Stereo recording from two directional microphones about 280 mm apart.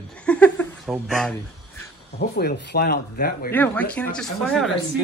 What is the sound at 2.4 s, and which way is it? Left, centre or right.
Speech, left.